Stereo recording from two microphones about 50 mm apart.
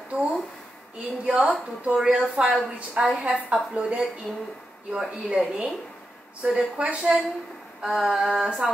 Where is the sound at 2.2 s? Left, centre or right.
Centre.